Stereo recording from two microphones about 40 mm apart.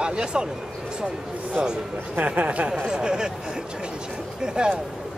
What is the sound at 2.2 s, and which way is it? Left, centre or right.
Speech, right.